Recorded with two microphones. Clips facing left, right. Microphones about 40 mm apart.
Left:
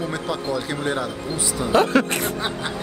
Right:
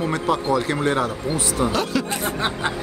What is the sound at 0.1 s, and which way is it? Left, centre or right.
Speech, right.